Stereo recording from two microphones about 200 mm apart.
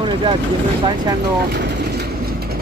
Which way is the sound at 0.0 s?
25° right (ahead or behind).